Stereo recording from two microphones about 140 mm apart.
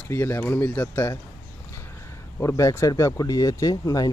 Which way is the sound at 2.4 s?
20° left (ahead or behind).